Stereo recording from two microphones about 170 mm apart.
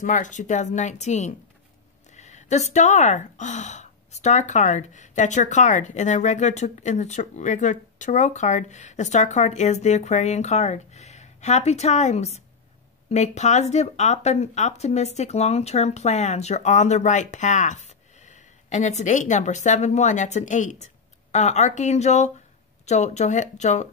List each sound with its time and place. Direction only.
0.0 s speech: 50° left (ahead or behind)